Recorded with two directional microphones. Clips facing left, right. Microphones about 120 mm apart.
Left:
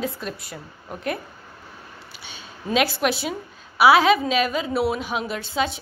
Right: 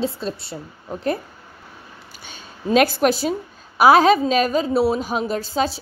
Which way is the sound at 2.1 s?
45° right (ahead or behind).